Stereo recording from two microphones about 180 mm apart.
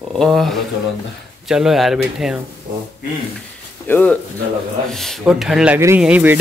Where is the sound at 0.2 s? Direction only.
Centre (ahead or behind).